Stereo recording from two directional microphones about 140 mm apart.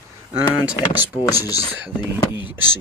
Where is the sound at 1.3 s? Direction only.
25° left (ahead or behind).